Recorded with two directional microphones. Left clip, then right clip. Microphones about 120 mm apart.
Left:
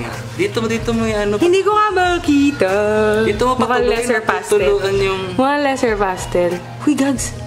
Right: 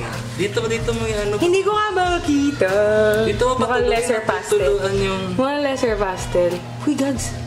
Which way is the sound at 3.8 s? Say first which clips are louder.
Left 2 dB; 20° left (ahead or behind).